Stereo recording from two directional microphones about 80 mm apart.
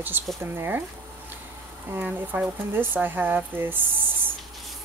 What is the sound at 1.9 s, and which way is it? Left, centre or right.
Speech, right.